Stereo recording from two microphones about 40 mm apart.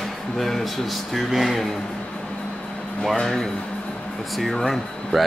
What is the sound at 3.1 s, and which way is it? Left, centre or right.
Speech, centre.